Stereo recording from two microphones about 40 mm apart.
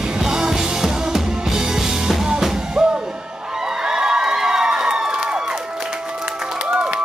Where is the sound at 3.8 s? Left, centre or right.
Centre.